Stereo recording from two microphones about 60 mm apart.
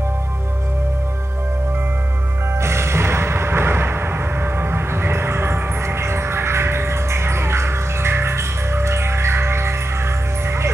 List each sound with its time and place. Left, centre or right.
2.6 s music: right